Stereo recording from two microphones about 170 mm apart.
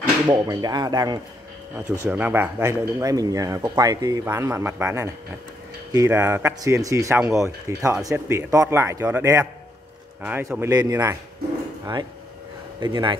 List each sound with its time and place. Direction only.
0.3 s speech: 25° right (ahead or behind)
1.9 s speech: 10° right (ahead or behind); by 13.2 s 25° right (ahead or behind)